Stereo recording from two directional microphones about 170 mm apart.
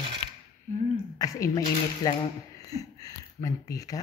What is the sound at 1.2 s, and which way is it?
A woman's voice, 20° left (ahead or behind).